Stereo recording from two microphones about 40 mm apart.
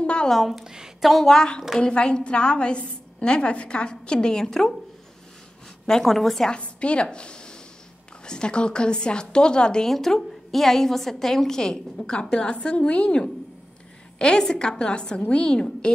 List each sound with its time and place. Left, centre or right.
0.0 s a sound: left
0.4 s a woman's voice: centre
0.7 s speech: centre
1.2 s a woman's voice: centre
5.9 s a woman's voice: centre
6.6 s a woman's voice: left
9.8 s a woman's voice: centre